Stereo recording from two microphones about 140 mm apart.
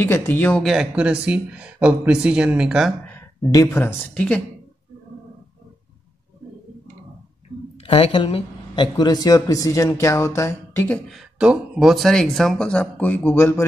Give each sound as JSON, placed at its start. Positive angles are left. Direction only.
{"t": 0.0, "sound": "speech", "side_deg": 15}
{"t": 0.6, "sound": "speech", "side_deg": -5}
{"t": 3.1, "sound": "speech", "side_deg": 15}
{"t": 7.8, "sound": "speech", "side_deg": 40}
{"t": 11.1, "sound": "speech", "side_deg": -5}